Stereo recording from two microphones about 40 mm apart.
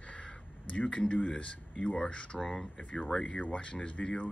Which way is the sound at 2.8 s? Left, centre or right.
Left.